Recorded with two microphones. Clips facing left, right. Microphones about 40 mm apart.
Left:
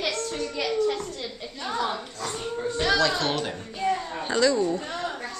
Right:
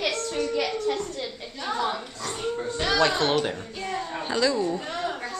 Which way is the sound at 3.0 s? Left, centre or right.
Right.